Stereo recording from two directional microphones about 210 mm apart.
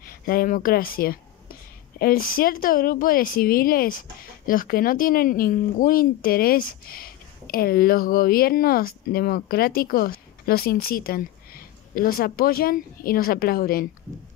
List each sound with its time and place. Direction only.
0.0 s speech: 45° left (ahead or behind)